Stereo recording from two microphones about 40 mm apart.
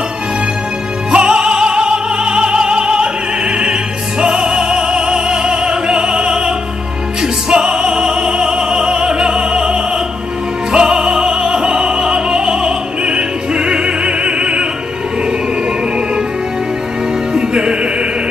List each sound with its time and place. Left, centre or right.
1.1 s music: right
17.3 s music: right